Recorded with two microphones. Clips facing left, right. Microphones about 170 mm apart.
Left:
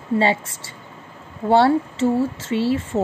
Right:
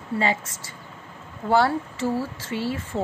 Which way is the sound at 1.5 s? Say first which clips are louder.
Left 5 dB; 25° left (ahead or behind).